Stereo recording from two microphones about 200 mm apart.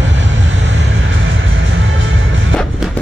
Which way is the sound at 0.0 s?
70° right (ahead or behind).